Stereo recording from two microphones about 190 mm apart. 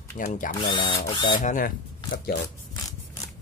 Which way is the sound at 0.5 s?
25° left (ahead or behind).